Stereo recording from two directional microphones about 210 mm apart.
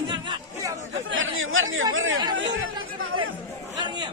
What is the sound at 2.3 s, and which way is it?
Chatter, 75° right (ahead or behind).